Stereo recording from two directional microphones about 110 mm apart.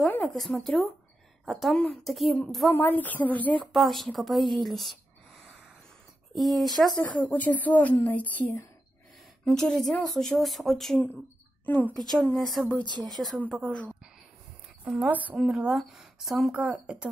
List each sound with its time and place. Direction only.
0.0 s speech: 15° left (ahead or behind)
2.7 s a woman's voice: 15° left (ahead or behind)
3.7 s speech: centre (ahead or behind)
6.3 s speech: centre (ahead or behind)
7.0 s a woman's voice: 15° left (ahead or behind)
11.6 s a woman's voice: 15° left (ahead or behind)
12.1 s speech: centre (ahead or behind)
12.8 s speech: 40° right (ahead or behind)
15.0 s speech: 15° right (ahead or behind)
15.3 s speech: 5° right (ahead or behind)